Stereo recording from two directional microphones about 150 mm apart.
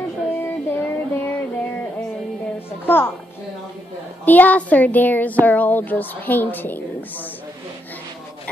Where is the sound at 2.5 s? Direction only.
15° left (ahead or behind).